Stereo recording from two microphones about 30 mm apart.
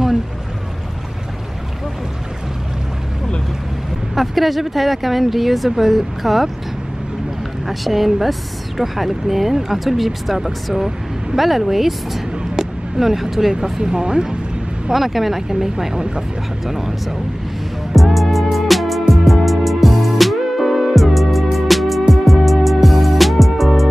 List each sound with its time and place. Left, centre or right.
4.1 s a woman's voice: centre
7.6 s a woman's voice: centre
12.5 s a sound: centre
13.6 s speech: right
14.9 s speech: centre
17.9 s music: centre